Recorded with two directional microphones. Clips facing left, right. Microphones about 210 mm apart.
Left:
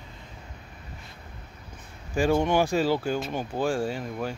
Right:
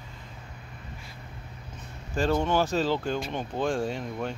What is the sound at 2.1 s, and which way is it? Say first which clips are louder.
Speech: left 2 dB; 10° left (ahead or behind).